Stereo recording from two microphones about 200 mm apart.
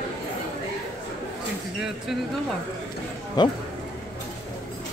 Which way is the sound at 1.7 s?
5° right (ahead or behind).